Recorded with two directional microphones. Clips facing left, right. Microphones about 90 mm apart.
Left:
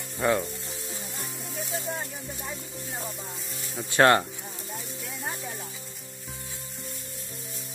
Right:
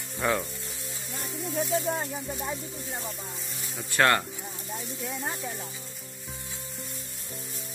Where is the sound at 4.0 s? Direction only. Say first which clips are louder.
Left 4 dB; 25° left (ahead or behind).